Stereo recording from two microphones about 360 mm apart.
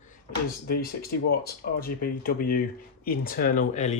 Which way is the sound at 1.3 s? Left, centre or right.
Left.